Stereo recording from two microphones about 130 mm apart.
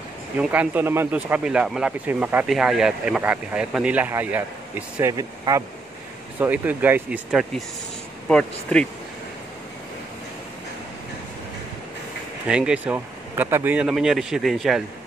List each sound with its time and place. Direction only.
0.4 s speech: 10° right (ahead or behind)
2.4 s speech: 5° right (ahead or behind)
5.1 s speech: 30° right (ahead or behind)
6.4 s speech: 15° right (ahead or behind)
8.3 s speech: 5° left (ahead or behind)
12.4 s speech: 5° right (ahead or behind)